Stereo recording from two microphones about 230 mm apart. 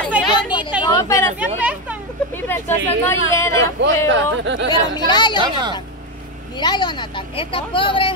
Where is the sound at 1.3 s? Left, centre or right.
Centre.